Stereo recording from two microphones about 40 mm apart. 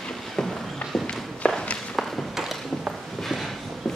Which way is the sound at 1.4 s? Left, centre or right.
Left.